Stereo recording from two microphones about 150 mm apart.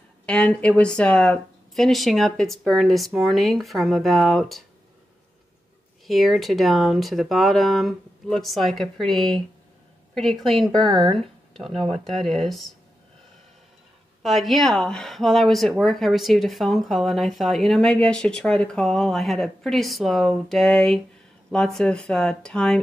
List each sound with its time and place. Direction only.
0.3 s speech: 5° left (ahead or behind)
6.0 s speech: centre (ahead or behind)
10.9 s speech: 35° right (ahead or behind)
11.1 s a sound: centre (ahead or behind)
11.7 s speech: 40° right (ahead or behind)
12.0 s speech: 5° left (ahead or behind)
14.2 s speech: centre (ahead or behind)